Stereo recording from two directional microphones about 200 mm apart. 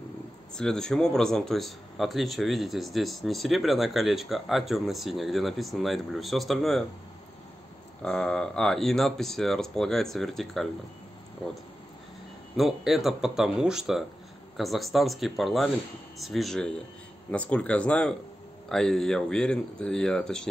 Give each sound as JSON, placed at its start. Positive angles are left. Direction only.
{"t": 0.6, "sound": "a man's voice", "side_deg": 5}
{"t": 8.0, "sound": "a man's voice", "side_deg": 5}
{"t": 12.5, "sound": "a man's voice", "side_deg": 0}